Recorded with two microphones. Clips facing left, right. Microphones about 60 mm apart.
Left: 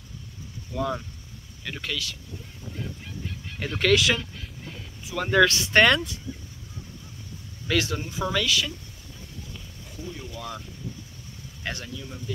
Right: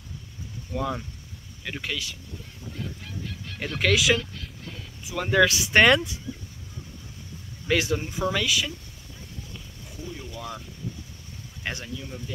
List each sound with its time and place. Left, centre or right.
0.7 s speech: centre
3.5 s speech: centre
4.2 s vehicle: centre
5.0 s speech: centre
7.6 s speech: centre
9.5 s a sound: centre
11.6 s speech: centre